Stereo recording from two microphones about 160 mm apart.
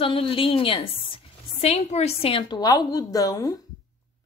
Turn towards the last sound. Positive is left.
turn(degrees=20)  # may be behind; listen again after turning